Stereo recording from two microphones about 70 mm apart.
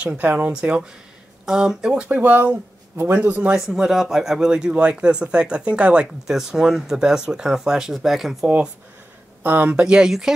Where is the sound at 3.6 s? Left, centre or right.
Centre.